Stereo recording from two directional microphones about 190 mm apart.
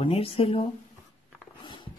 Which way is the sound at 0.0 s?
30° left (ahead or behind).